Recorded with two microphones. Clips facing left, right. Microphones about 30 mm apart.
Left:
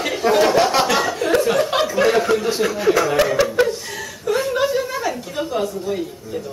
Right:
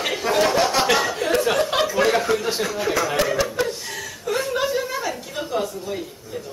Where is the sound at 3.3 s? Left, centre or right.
Centre.